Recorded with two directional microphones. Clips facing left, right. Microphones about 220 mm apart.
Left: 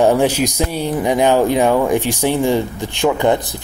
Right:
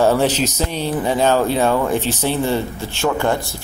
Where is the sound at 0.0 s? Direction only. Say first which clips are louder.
Left 2 dB; 15° left (ahead or behind).